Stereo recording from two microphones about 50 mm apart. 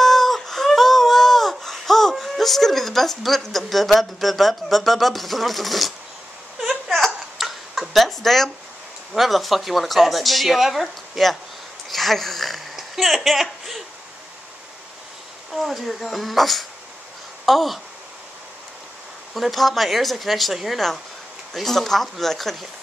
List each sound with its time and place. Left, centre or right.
0.0 s a sound: centre
6.6 s hiccup: centre
7.3 s a sound: centre
9.1 s speech: centre
15.5 s speech: centre
19.3 s speech: centre